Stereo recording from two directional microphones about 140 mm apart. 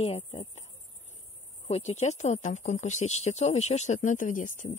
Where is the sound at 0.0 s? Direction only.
50° left (ahead or behind).